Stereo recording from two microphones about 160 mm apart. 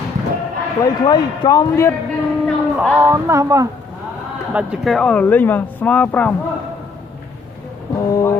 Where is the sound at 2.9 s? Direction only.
15° right (ahead or behind).